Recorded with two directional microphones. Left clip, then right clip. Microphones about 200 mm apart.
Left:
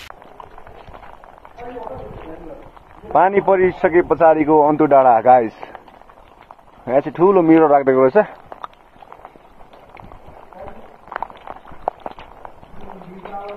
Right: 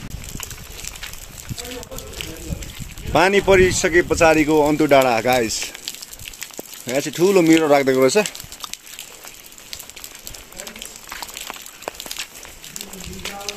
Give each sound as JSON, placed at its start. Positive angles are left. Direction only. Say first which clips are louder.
{"t": 3.1, "sound": "speech", "louder": "left 1 dB", "side_deg": -20}
{"t": 6.9, "sound": "speech", "louder": "left 4 dB", "side_deg": -25}